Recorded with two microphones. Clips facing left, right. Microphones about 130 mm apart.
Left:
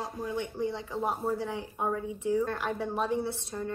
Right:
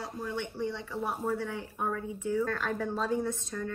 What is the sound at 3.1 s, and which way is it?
Speech, 25° left (ahead or behind).